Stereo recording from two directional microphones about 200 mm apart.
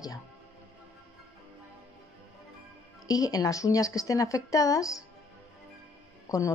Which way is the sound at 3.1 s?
20° left (ahead or behind).